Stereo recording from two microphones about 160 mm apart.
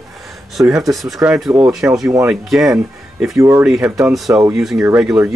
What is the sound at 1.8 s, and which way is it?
Speech, 15° right (ahead or behind).